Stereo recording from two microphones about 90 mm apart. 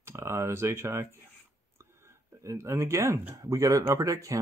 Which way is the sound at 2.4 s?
35° right (ahead or behind).